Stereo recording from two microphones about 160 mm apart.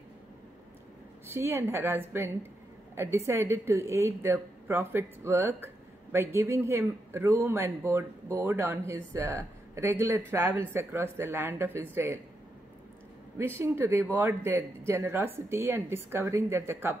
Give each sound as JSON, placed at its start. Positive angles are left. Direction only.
{"t": 1.2, "sound": "a man's voice", "side_deg": -15}
{"t": 13.6, "sound": "a man's voice", "side_deg": -15}